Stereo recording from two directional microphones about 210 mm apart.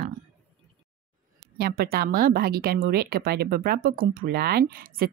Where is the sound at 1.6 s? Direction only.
45° right (ahead or behind).